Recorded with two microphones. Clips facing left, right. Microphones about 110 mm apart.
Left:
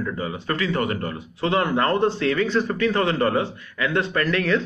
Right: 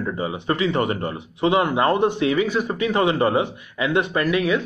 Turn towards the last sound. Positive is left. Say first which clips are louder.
# right 1 dB
turn(degrees=-10)  # may be behind; listen again after turning